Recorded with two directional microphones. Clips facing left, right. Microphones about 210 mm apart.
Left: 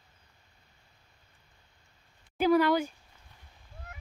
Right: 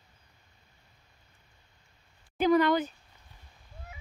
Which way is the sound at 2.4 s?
5° left (ahead or behind).